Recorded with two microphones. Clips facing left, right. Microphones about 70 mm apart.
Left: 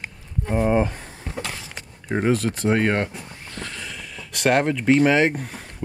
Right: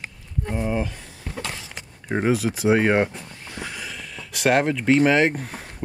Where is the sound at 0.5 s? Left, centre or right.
Left.